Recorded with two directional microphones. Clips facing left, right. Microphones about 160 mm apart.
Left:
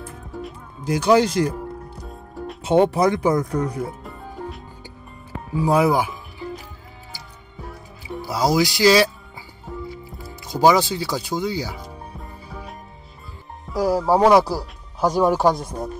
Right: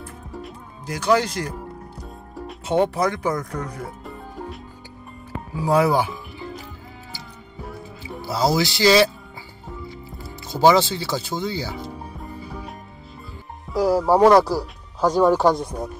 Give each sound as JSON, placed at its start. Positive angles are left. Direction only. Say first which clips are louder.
{"t": 0.8, "sound": "speech", "louder": "left 4 dB", "side_deg": 20}
{"t": 2.0, "sound": "music", "louder": "left 3 dB", "side_deg": 0}
{"t": 2.6, "sound": "speech", "louder": "left 4 dB", "side_deg": 20}
{"t": 4.0, "sound": "music", "louder": "left 1 dB", "side_deg": 0}
{"t": 5.7, "sound": "speech", "louder": "even", "side_deg": 15}
{"t": 8.3, "sound": "speech", "louder": "left 1 dB", "side_deg": 10}
{"t": 10.4, "sound": "speech", "louder": "even", "side_deg": 10}
{"t": 13.7, "sound": "speech", "louder": "right 1 dB", "side_deg": 0}